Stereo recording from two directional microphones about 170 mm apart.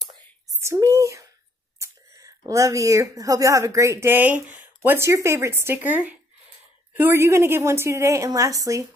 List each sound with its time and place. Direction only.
0.6 s a woman's voice: 15° right (ahead or behind)